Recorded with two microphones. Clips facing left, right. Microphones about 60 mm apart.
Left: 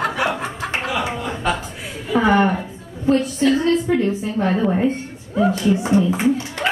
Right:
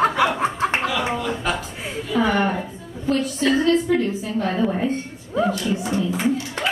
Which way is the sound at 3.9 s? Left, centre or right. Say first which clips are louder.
Left 2 dB; left.